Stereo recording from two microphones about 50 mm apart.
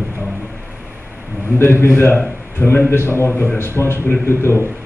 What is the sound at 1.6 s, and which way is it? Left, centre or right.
A man's voice, left.